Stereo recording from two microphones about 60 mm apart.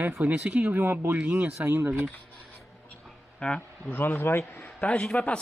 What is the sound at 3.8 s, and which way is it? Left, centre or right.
Speech, left.